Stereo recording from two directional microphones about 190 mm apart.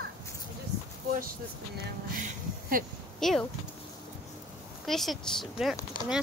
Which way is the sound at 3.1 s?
Centre (ahead or behind).